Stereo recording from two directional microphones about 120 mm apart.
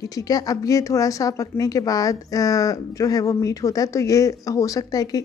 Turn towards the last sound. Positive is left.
turn(degrees=30)  # may be behind; listen again after turning